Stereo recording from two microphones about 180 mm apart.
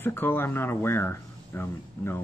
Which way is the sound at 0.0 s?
10° left (ahead or behind).